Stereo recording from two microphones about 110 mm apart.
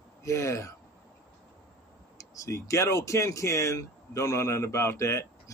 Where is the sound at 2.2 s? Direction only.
25° left (ahead or behind).